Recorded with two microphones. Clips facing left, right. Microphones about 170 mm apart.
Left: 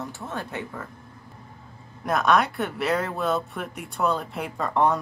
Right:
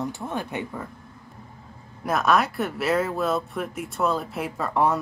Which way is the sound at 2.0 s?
Centre (ahead or behind).